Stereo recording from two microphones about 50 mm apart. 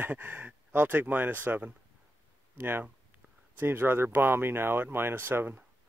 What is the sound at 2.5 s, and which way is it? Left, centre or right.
Speech, right.